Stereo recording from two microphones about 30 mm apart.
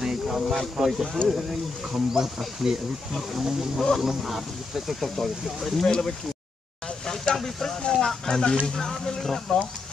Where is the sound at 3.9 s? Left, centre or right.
Centre.